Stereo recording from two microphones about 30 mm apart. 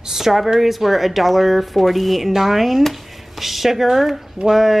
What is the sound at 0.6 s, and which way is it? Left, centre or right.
Speech, centre.